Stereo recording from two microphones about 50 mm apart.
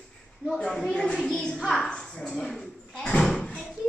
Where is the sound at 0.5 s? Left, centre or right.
Centre.